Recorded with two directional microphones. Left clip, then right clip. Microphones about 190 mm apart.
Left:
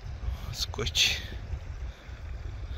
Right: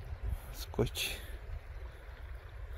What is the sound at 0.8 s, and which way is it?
Speech, 10° right (ahead or behind).